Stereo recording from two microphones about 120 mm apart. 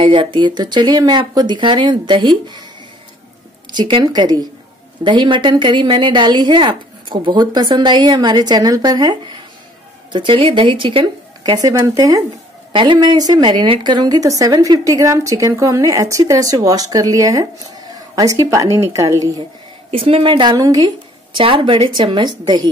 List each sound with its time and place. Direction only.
0.0 s a woman's voice: 45° right (ahead or behind)
3.7 s a woman's voice: 40° right (ahead or behind)
11.5 s a woman's voice: 30° right (ahead or behind)
12.7 s a woman's voice: 45° right (ahead or behind); by 19.4 s 30° right (ahead or behind)
19.9 s a woman's voice: 50° right (ahead or behind)
20.5 s a woman's voice: 30° right (ahead or behind)
21.4 s a woman's voice: 45° right (ahead or behind)